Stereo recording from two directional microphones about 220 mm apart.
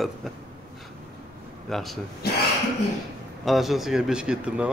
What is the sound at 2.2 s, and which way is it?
Speech, 45° left (ahead or behind).